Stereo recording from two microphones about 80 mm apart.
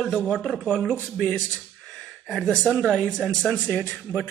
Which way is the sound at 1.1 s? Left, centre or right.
Centre.